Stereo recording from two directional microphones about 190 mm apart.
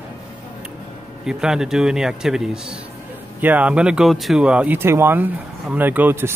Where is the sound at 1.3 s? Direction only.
5° right (ahead or behind).